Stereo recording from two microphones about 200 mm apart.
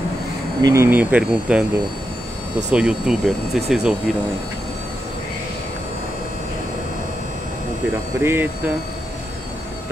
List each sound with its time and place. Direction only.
0.6 s speech: 15° right (ahead or behind)
2.7 s speech: 5° right (ahead or behind)
8.2 s speech: 10° right (ahead or behind)